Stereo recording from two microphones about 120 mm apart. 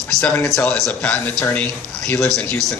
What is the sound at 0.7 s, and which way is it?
Speech, 5° left (ahead or behind).